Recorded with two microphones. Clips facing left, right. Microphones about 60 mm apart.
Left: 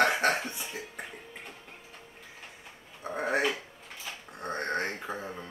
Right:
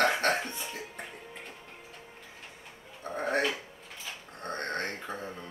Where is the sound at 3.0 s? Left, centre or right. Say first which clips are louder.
Left 1 dB; centre.